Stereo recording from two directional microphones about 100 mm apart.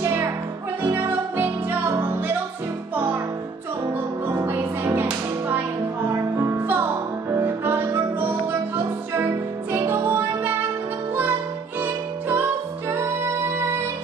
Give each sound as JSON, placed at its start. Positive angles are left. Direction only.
{"t": 0.0, "sound": "music", "side_deg": -20}
{"t": 4.5, "sound": "music", "side_deg": -25}
{"t": 6.4, "sound": "music", "side_deg": -25}
{"t": 11.8, "sound": "music", "side_deg": -20}